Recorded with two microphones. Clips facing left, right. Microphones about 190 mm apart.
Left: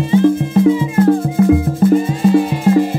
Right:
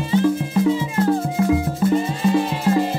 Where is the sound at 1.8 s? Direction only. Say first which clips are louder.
Left 7 dB; 50° left (ahead or behind).